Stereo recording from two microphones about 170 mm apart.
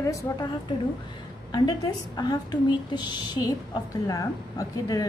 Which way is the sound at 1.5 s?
25° left (ahead or behind).